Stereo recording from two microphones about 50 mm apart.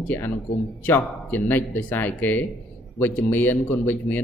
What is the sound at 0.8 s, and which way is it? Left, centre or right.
Speech, left.